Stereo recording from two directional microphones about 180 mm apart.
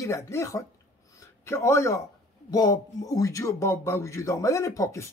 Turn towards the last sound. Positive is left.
turn(degrees=15)  # may be behind; listen again after turning